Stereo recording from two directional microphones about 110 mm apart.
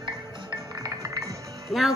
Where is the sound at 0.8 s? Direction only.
30° right (ahead or behind).